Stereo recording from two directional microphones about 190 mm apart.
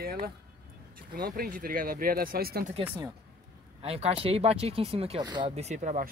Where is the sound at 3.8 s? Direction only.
35° right (ahead or behind).